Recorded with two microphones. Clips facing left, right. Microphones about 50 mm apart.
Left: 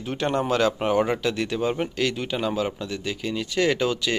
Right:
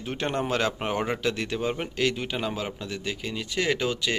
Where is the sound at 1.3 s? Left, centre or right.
Right; by 4.1 s centre.